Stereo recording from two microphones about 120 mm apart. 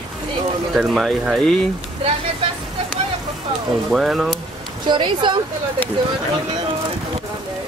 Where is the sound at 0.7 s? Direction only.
5° right (ahead or behind).